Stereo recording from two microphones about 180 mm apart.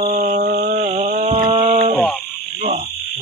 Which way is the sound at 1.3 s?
30° right (ahead or behind).